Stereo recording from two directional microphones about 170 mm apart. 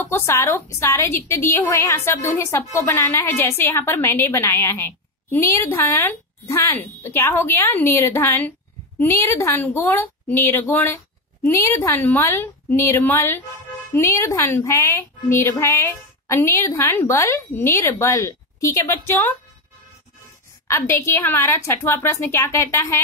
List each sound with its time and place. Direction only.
0.0 s a woman's voice: 15° left (ahead or behind)
20.6 s a woman's voice: 15° left (ahead or behind)